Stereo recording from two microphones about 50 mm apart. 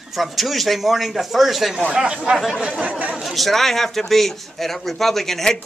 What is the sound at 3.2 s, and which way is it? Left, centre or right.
A man's voice, centre.